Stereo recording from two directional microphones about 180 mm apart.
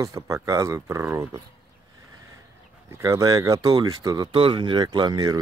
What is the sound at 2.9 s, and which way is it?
Speech, 15° right (ahead or behind).